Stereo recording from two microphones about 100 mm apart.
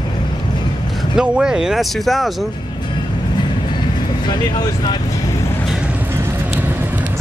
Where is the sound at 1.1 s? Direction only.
5° right (ahead or behind).